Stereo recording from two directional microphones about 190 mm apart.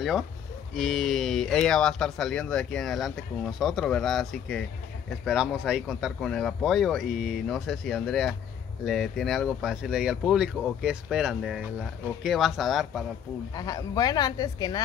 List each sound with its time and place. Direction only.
0.7 s speech: centre (ahead or behind)
13.6 s speech: 20° left (ahead or behind)